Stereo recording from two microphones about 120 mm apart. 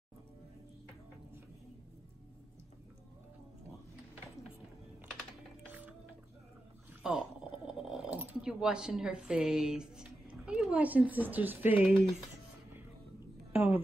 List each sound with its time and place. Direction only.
5.7 s mechanisms: 15° right (ahead or behind)
7.0 s gargling: 5° right (ahead or behind)
13.5 s a sound: 15° right (ahead or behind)